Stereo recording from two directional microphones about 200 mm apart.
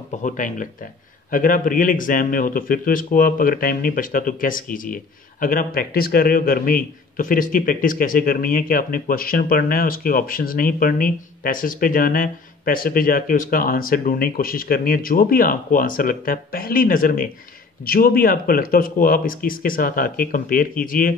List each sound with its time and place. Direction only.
0.1 s speech: 40° left (ahead or behind)